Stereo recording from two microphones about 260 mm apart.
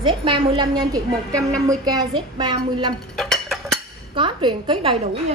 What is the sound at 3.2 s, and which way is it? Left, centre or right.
Music, centre.